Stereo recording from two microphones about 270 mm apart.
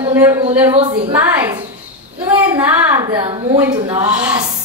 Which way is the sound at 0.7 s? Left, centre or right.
Centre.